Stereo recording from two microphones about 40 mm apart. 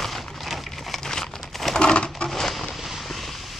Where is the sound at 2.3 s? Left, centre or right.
Centre.